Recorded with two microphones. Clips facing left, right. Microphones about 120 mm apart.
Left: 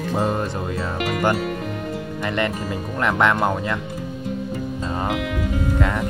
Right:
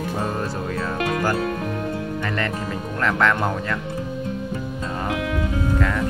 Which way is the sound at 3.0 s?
15° left (ahead or behind).